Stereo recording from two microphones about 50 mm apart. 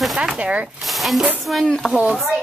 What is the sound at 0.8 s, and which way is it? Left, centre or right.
Speech, centre.